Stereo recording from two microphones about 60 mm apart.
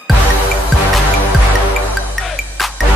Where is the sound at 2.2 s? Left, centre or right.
Centre.